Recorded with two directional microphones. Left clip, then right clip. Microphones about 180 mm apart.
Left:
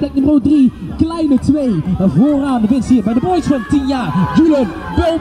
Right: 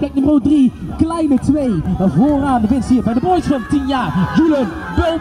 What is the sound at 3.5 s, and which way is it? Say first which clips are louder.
Speech: left 1 dB; 60° left (ahead or behind).